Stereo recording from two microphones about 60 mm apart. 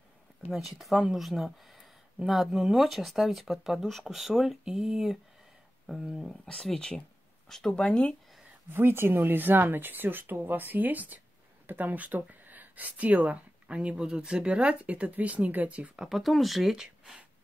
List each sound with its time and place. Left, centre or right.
0.5 s speech: centre
6.4 s speech: centre
7.8 s speech: centre
8.7 s speech: right
16.0 s speech: centre